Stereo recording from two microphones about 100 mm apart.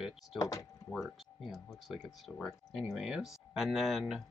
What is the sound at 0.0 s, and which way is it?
Speech, 5° right (ahead or behind).